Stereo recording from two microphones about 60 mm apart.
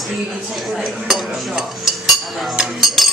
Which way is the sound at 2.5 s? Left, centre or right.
Centre.